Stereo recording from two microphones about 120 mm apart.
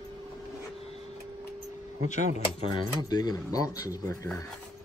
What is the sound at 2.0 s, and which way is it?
Speech, 90° left.